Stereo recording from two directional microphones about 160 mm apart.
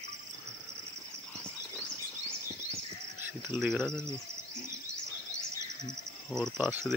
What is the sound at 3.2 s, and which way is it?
Bird, 5° right (ahead or behind).